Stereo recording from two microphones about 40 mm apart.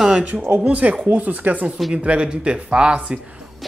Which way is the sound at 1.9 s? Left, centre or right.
Right.